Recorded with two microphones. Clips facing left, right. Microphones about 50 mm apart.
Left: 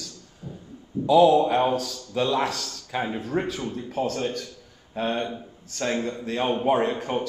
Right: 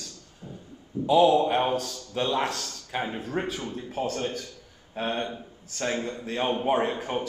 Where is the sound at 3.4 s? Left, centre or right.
Centre.